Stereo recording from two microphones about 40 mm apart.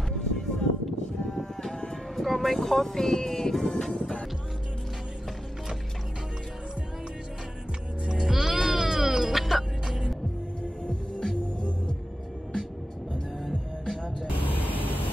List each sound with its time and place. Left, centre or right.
0.1 s music: centre
2.2 s speech: centre
8.1 s music: centre
14.4 s vehicle: left